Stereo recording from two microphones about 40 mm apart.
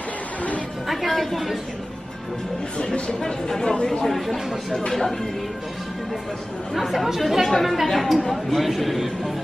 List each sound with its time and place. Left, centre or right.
0.8 s a man's voice: centre
2.8 s speech: centre
4.0 s speech: centre
6.7 s a man's voice: centre